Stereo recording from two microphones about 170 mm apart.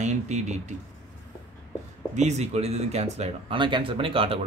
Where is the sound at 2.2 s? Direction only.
40° right (ahead or behind).